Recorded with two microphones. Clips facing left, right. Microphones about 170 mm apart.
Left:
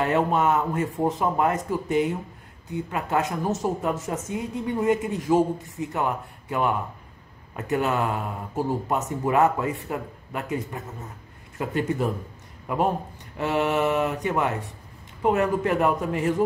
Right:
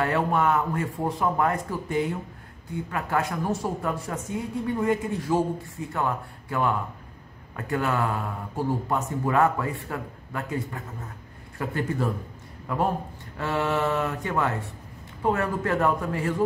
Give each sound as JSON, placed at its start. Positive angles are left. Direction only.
{"t": 0.0, "sound": "speech", "side_deg": 20}